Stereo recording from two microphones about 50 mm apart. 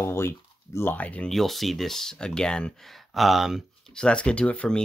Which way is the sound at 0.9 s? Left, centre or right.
Left.